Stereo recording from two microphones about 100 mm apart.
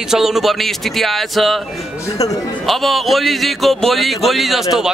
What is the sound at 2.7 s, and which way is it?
A man's voice, centre (ahead or behind).